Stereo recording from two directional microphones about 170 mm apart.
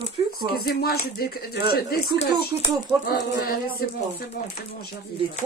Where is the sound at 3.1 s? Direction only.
60° left (ahead or behind).